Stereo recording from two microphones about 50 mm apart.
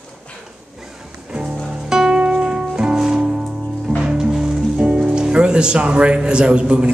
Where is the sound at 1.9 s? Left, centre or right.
Centre.